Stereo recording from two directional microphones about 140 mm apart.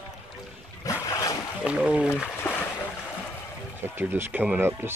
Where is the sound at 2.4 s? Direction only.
15° left (ahead or behind).